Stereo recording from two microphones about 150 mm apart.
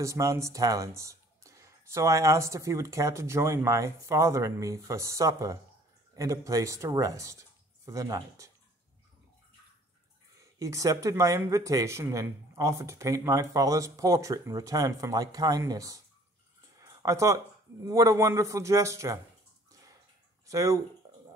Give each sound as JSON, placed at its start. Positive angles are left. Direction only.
{"t": 0.0, "sound": "speech", "side_deg": -20}
{"t": 10.6, "sound": "speech", "side_deg": -20}
{"t": 16.7, "sound": "a sound", "side_deg": -20}
{"t": 17.8, "sound": "speech", "side_deg": -25}
{"t": 20.4, "sound": "speech", "side_deg": -20}